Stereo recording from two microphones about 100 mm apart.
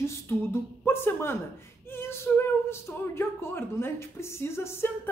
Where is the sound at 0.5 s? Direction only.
25° left (ahead or behind).